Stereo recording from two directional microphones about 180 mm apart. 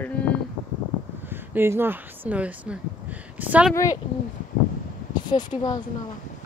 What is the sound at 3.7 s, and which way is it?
Speech, 20° left (ahead or behind).